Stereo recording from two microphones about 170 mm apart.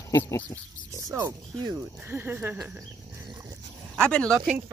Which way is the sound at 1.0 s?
15° right (ahead or behind).